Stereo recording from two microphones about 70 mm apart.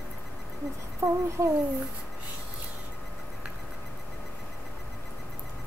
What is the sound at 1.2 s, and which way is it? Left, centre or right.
Speech, right.